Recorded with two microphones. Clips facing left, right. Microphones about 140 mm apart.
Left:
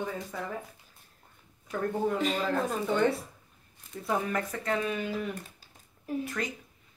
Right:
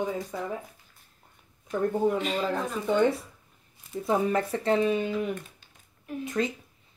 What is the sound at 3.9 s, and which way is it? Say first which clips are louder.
Speech: right 5 dB; 30° right (ahead or behind).